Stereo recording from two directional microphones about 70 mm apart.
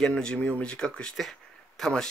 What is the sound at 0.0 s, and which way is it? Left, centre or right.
Speech, centre.